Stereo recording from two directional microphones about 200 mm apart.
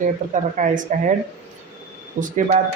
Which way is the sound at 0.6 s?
40° right (ahead or behind).